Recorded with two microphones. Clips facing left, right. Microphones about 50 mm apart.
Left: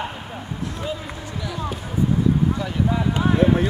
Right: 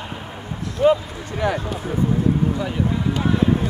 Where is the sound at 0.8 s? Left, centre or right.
Right.